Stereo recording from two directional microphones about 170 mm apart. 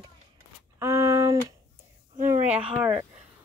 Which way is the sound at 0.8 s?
15° right (ahead or behind).